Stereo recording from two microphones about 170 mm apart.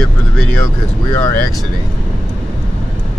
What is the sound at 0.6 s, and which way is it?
Speech, 20° left (ahead or behind).